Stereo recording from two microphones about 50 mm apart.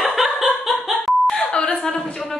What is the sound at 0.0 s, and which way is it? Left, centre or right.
Laughter, centre.